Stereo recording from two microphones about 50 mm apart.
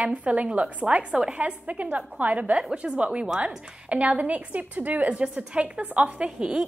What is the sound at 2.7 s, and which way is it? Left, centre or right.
A woman's voice, centre.